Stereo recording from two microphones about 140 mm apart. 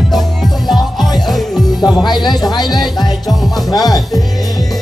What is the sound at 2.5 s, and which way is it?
Music, 30° left (ahead or behind).